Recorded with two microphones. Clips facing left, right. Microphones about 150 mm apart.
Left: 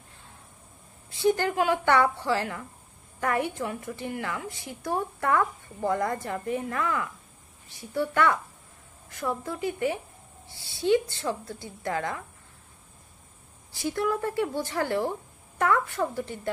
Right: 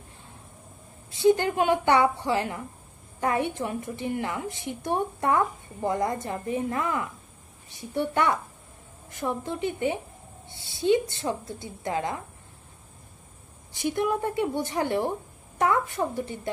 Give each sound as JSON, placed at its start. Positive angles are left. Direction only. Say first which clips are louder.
{"t": 1.1, "sound": "a woman's voice", "louder": "right 3 dB", "side_deg": -20}
{"t": 13.7, "sound": "a woman's voice", "louder": "right 2 dB", "side_deg": -20}